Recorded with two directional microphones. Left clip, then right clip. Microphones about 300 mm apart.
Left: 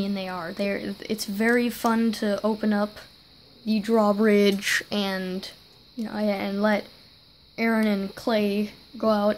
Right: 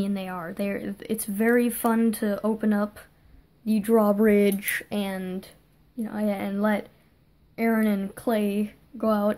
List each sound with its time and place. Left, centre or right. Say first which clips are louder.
0.0 s speech: left 1 dB; centre